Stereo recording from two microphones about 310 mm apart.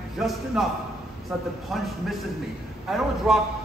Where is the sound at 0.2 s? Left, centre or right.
Centre.